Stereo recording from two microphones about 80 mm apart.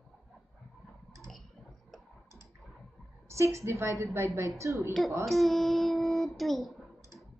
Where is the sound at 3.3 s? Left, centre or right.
Right.